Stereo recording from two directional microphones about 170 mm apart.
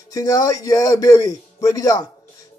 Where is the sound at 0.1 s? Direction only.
20° left (ahead or behind).